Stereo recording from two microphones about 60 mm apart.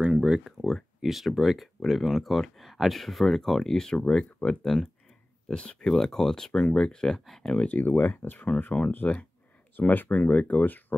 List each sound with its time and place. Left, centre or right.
0.0 s a sound: centre
0.4 s speech: centre
7.4 s speech: left